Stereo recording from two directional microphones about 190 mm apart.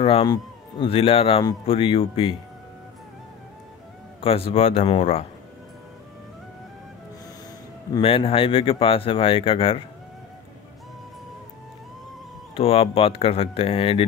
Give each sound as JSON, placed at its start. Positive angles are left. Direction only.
{"t": 0.0, "sound": "speech", "side_deg": 25}
{"t": 4.2, "sound": "a man's voice", "side_deg": 30}
{"t": 8.0, "sound": "speech", "side_deg": 30}
{"t": 12.5, "sound": "speech", "side_deg": 30}